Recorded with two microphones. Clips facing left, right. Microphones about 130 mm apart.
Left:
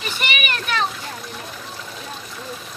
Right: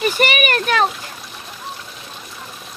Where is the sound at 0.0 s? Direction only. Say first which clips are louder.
Right 9 dB; 45° right (ahead or behind).